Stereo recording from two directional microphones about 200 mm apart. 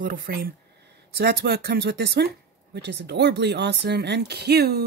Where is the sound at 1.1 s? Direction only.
55° right (ahead or behind).